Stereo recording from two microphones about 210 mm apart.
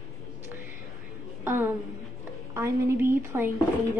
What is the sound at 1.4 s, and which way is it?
A woman's voice, 10° right (ahead or behind).